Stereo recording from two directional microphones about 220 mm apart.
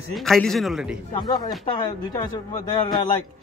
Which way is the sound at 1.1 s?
20° left (ahead or behind).